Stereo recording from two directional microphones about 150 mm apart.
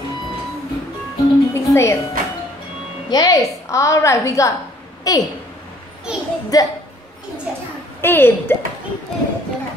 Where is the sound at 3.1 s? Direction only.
25° left (ahead or behind).